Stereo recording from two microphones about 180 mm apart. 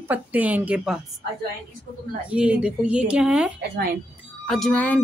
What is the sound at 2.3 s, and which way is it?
Speech, 5° right (ahead or behind).